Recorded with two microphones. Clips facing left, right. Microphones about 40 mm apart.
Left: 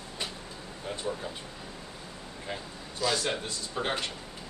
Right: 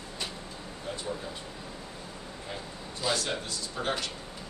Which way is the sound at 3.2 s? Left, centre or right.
Centre.